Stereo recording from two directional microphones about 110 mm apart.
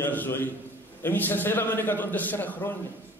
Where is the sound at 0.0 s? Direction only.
20° left (ahead or behind).